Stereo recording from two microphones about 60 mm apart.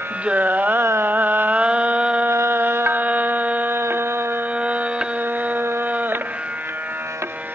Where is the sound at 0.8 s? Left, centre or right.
Right.